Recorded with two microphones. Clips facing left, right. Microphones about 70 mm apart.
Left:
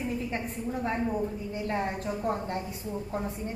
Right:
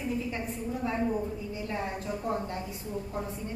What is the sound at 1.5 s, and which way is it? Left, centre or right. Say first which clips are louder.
Speech: left 6 dB; left.